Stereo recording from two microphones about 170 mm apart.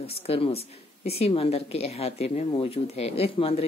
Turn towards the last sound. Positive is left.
turn(degrees=35)  # may be behind; listen again after turning